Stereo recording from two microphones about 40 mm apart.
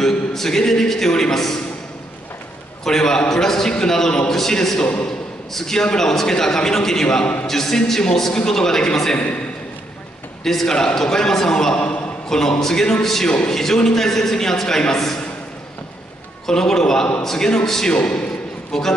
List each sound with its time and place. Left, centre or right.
0.0 s a man's voice: centre
2.8 s a man's voice: centre
4.6 s a man's voice: centre
5.0 s a sound: centre
5.9 s a man's voice: centre
10.4 s a man's voice: centre
16.4 s a man's voice: centre
17.9 s a man's voice: left
18.7 s a man's voice: centre